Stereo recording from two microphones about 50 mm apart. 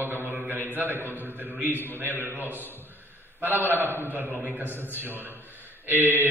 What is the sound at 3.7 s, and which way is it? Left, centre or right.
Speech, left.